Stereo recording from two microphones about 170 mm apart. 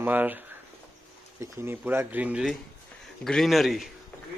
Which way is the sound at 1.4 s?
15° right (ahead or behind).